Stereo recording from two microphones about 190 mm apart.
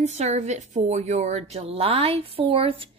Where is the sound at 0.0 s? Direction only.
35° right (ahead or behind).